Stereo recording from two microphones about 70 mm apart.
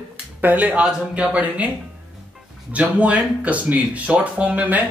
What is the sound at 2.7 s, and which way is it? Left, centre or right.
Speech, centre.